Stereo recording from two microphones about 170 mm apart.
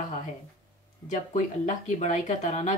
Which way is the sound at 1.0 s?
45° left (ahead or behind).